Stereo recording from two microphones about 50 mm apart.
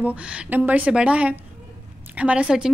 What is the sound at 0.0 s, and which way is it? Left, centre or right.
A woman's voice, right.